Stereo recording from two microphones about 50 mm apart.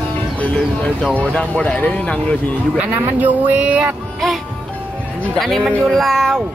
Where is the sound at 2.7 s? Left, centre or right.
Right.